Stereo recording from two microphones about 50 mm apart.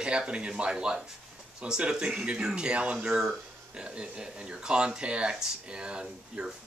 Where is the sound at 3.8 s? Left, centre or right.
Right.